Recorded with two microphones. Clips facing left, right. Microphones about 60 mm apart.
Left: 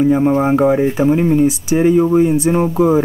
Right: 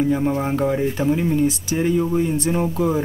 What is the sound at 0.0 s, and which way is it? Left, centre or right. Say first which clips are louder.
Speech: left 7 dB; left.